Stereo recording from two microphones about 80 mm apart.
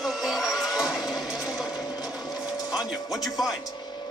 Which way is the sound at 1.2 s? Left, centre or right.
Centre.